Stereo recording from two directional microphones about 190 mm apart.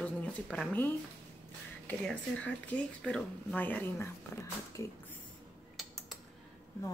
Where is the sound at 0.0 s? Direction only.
5° left (ahead or behind).